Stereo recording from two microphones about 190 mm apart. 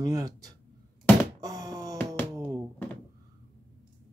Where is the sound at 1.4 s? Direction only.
20° right (ahead or behind).